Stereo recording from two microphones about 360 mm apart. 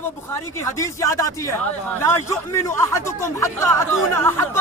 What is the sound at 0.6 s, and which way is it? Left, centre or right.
Speech, centre.